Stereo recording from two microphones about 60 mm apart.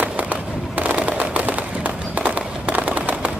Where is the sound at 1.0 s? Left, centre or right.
Right.